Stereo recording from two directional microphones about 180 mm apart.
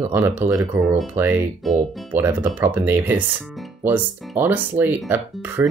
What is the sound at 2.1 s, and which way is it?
Speech, 15° right (ahead or behind).